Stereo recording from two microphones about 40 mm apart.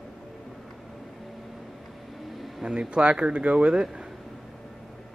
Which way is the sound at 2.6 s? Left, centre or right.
Right.